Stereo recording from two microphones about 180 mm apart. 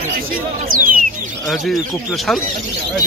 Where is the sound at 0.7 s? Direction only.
50° right (ahead or behind).